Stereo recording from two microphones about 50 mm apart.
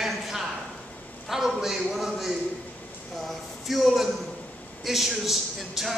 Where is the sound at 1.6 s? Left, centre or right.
Centre.